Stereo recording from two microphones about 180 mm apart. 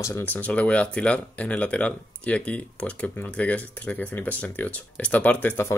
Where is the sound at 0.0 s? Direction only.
10° left (ahead or behind).